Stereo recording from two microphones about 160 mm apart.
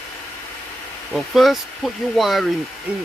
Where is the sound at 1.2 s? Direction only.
Centre (ahead or behind).